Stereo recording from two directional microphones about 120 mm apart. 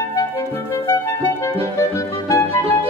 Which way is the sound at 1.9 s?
25° left (ahead or behind).